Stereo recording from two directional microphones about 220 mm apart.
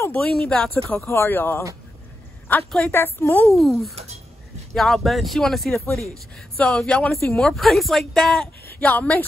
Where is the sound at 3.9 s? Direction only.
30° right (ahead or behind).